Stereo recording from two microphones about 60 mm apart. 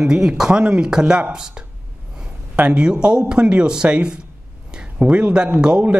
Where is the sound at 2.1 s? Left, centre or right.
Centre.